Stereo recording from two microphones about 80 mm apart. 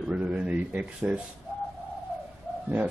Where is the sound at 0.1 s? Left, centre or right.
Centre.